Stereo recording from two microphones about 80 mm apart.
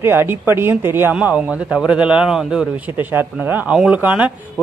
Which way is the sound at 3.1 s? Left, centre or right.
Right.